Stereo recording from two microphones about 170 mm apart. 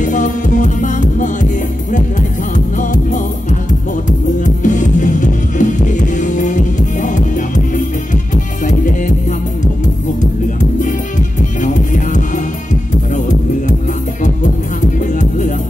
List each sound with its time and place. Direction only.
0.0 s music: 50° left (ahead or behind)
4.6 s music: 45° left (ahead or behind)
11.6 s music: 50° left (ahead or behind)
15.1 s music: 45° left (ahead or behind)